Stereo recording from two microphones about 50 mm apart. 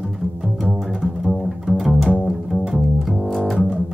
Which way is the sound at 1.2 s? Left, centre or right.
Centre.